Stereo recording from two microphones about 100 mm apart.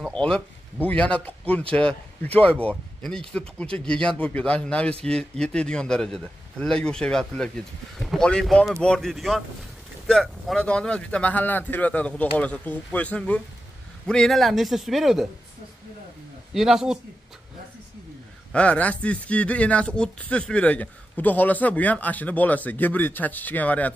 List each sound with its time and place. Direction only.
0.1 s a man's voice: 10° left (ahead or behind)
10.5 s a man's voice: 10° left (ahead or behind)
16.5 s a man's voice: 5° right (ahead or behind)
18.5 s speech: 15° left (ahead or behind)